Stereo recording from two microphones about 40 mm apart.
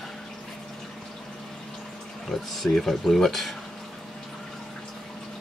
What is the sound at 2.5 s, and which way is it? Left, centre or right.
Speech, centre.